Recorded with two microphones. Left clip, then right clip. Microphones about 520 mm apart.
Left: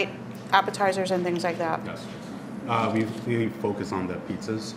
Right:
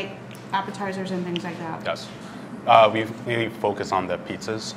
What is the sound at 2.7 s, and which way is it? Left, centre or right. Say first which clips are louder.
Speech: right 10 dB; right.